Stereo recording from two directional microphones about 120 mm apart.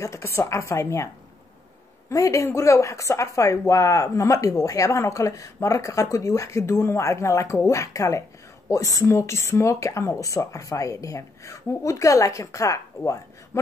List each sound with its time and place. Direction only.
0.0 s speech: 25° left (ahead or behind)